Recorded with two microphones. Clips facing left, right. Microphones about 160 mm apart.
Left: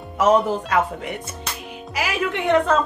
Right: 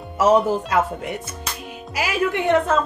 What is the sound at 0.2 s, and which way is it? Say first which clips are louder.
Speech: right 1 dB; 5° right (ahead or behind).